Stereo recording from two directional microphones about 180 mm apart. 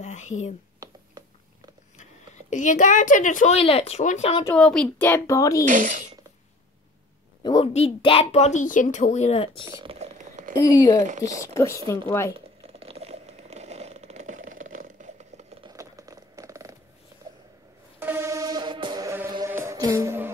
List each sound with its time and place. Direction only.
0.0 s speech: 40° left (ahead or behind)
0.8 s a sound: 20° right (ahead or behind)
2.5 s speech: 45° left (ahead or behind)
4.6 s a woman's voice: 5° left (ahead or behind)
5.7 s speech: 45° right (ahead or behind)
7.4 s speech: 30° left (ahead or behind)
9.8 s a sound: 35° right (ahead or behind)
10.6 s speech: 20° left (ahead or behind)
11.0 s speech: 45° right (ahead or behind)
11.2 s a woman's voice: 15° left (ahead or behind)
12.4 s a sound: 30° right (ahead or behind)
15.6 s a sound: 20° right (ahead or behind)
17.9 s music: 15° right (ahead or behind)